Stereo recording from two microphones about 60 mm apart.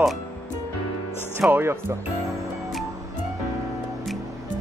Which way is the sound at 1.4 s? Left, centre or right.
Centre.